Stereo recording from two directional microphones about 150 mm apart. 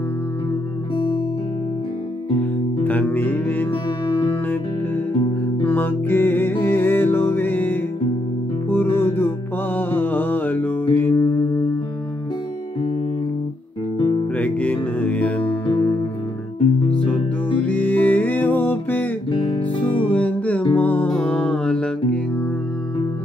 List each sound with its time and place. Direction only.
0.9 s music: 30° left (ahead or behind)
2.3 s music: 10° left (ahead or behind)
5.6 s music: 15° left (ahead or behind)
13.9 s guitar: 30° left (ahead or behind)
14.3 s music: 10° left (ahead or behind)
17.0 s music: 10° left (ahead or behind)
19.3 s music: 35° left (ahead or behind)
20.1 s music: 10° left (ahead or behind)